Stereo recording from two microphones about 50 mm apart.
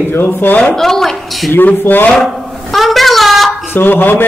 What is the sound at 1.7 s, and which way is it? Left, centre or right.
Speech, left.